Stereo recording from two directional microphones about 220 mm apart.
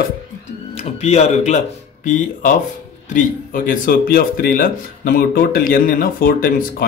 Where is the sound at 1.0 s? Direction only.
30° left (ahead or behind).